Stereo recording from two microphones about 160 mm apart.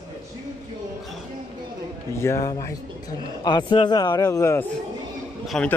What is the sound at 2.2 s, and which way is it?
Speech, 20° left (ahead or behind).